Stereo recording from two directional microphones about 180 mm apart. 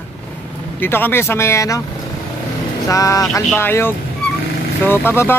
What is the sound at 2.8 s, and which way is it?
Speech, 20° left (ahead or behind).